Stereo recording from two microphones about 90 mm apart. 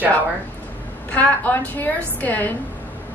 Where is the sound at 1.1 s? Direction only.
20° left (ahead or behind).